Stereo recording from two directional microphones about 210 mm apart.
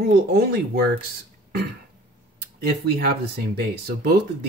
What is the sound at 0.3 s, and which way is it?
Speech, 45° right (ahead or behind).